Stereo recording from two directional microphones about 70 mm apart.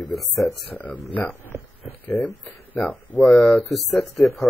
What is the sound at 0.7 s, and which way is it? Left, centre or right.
Speech, left.